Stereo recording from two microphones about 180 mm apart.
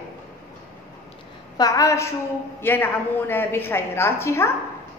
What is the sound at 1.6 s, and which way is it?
A woman's voice, 20° left (ahead or behind).